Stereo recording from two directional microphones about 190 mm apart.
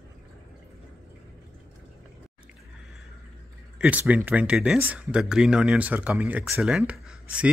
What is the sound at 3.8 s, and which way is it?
Speech, 5° right (ahead or behind).